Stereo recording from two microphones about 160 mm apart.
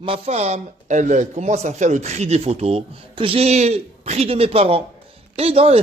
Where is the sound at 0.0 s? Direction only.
35° right (ahead or behind).